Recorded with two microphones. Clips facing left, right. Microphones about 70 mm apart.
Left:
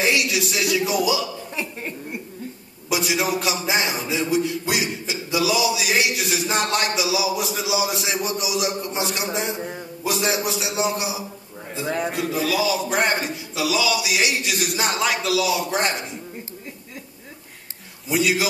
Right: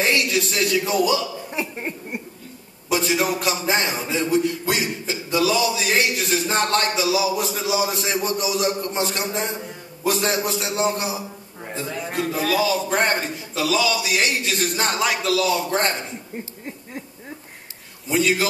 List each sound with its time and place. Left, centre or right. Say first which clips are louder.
0.0 s a man's voice: even; centre
1.5 s a sound: right 2 dB; right
2.9 s a man's voice: right 1 dB; centre
15.0 s speech: even; centre
15.3 s a man's voice: right 1 dB; centre
18.0 s a man's voice: right 1 dB; centre